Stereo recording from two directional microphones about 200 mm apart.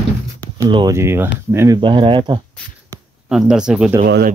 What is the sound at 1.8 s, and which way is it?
Speech, 25° right (ahead or behind).